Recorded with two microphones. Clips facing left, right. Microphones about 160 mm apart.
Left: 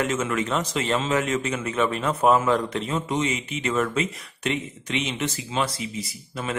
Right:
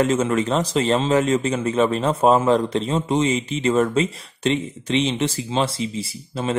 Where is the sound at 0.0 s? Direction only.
30° right (ahead or behind).